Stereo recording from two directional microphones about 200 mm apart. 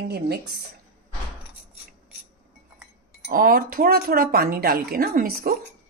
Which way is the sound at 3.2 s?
45° right (ahead or behind).